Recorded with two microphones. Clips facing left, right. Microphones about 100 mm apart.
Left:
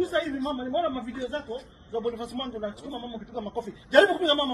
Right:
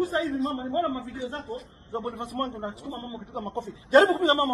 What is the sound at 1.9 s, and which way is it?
A man's voice, 25° right (ahead or behind).